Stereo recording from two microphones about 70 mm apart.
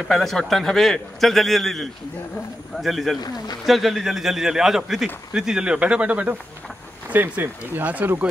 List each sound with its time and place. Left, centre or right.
0.1 s a man's voice: centre; by 8.3 s right